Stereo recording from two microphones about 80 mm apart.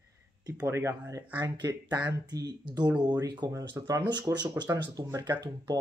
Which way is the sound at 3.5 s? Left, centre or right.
Right.